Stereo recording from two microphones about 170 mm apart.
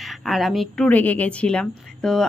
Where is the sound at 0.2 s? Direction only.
Centre (ahead or behind).